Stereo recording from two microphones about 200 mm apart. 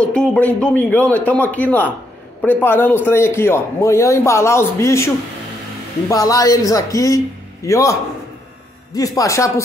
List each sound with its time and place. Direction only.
0.0 s a man's voice: 5° left (ahead or behind)